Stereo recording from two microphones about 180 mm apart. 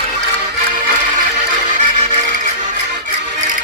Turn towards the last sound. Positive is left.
turn(degrees=-40)  # may be behind; listen again after turning